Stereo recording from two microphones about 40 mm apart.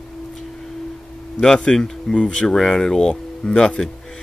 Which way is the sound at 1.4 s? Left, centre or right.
Centre.